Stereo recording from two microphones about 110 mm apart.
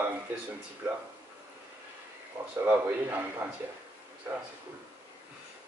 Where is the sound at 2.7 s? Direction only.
15° right (ahead or behind).